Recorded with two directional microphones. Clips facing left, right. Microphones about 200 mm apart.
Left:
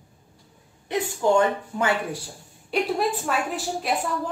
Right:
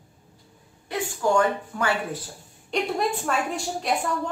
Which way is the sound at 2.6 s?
5° left (ahead or behind).